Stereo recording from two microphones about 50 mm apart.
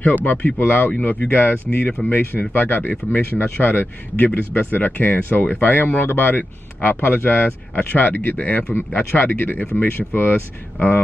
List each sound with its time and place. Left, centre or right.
0.0 s speech: left
3.3 s speech: left
7.9 s speech: left